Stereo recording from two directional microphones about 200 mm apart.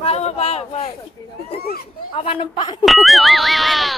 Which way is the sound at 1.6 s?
50° left (ahead or behind).